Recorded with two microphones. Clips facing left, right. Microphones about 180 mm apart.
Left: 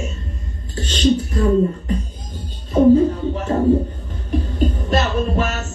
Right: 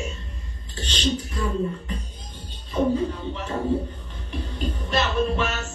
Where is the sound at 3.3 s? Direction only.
40° left (ahead or behind).